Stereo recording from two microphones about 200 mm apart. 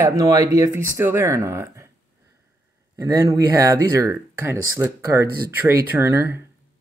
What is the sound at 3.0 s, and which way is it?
Speech, 15° right (ahead or behind).